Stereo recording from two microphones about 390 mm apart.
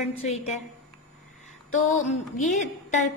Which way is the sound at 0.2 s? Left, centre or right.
Centre.